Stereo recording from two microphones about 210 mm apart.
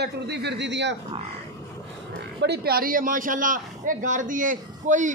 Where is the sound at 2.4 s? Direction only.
50° right (ahead or behind).